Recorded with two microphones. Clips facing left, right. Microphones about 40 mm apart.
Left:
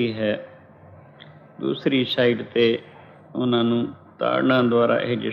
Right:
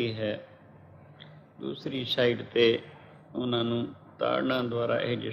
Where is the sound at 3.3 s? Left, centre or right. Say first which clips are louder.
Left 8 dB; left.